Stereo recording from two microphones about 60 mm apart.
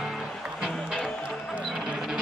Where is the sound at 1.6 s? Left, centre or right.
Centre.